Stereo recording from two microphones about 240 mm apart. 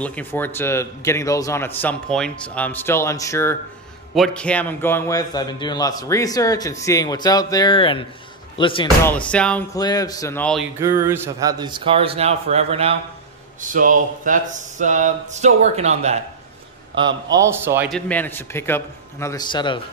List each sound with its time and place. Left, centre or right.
0.0 s a man's voice: centre
8.8 s speech: centre
9.8 s a man's voice: centre
10.8 s speech: centre; by 16.2 s right
16.9 s a man's voice: centre
17.9 s a man's voice: centre